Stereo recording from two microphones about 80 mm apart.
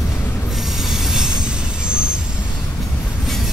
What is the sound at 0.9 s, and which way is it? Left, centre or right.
Train, centre.